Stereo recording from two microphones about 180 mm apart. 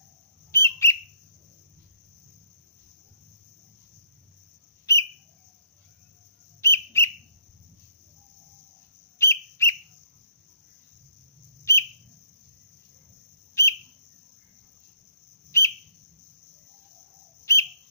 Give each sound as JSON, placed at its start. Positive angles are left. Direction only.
{"t": 0.5, "sound": "bird", "side_deg": 15}
{"t": 4.9, "sound": "bird", "side_deg": 15}
{"t": 6.6, "sound": "bird", "side_deg": 15}
{"t": 9.2, "sound": "bird", "side_deg": 15}
{"t": 11.7, "sound": "bird", "side_deg": 15}
{"t": 13.6, "sound": "bird", "side_deg": 15}
{"t": 15.5, "sound": "bird", "side_deg": 15}
{"t": 17.5, "sound": "bird", "side_deg": 15}